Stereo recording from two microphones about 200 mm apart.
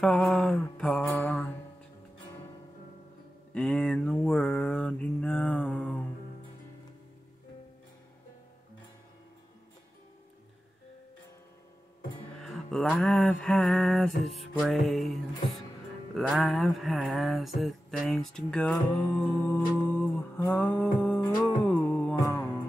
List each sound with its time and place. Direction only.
0.0 s mantra: 5° left (ahead or behind)
3.5 s mantra: 5° left (ahead or behind)
12.4 s mantra: centre (ahead or behind)
20.4 s music: 10° left (ahead or behind)